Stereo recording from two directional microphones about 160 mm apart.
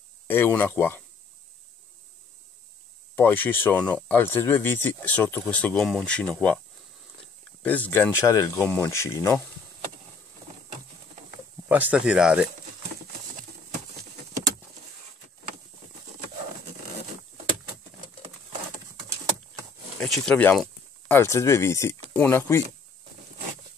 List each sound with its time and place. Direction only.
0.3 s speech: 10° left (ahead or behind)
3.2 s speech: 10° left (ahead or behind)
7.6 s speech: 10° left (ahead or behind)
11.7 s speech: 10° right (ahead or behind)
20.0 s speech: 5° left (ahead or behind)
21.1 s speech: 15° left (ahead or behind)